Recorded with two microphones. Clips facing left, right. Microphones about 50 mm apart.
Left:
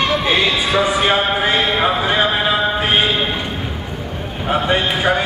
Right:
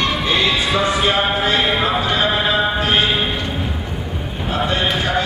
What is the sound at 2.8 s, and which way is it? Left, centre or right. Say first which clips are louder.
Clip-clop: left 1 dB; centre.